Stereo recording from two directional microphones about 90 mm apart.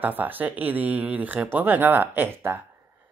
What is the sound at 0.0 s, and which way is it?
Speech, 20° right (ahead or behind).